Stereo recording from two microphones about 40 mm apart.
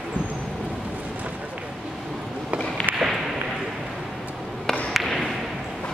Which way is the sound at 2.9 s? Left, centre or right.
Right.